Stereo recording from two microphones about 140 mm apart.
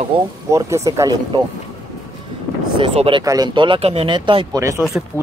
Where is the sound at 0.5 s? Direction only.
20° right (ahead or behind).